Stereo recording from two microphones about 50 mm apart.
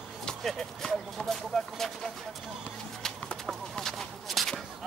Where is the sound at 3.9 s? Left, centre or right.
Centre.